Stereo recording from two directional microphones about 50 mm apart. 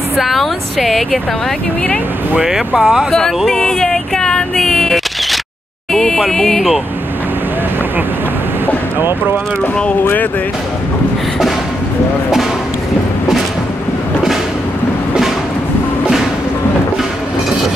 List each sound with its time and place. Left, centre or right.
0.2 s a woman's voice: centre
2.4 s speech: centre
3.1 s speech: centre
5.9 s a sound: centre
6.3 s speech: centre